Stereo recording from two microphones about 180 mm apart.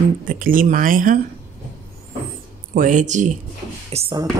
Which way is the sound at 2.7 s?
45° right (ahead or behind).